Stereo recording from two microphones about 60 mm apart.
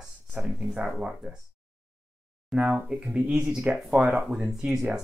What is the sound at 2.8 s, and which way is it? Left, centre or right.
Speech, centre.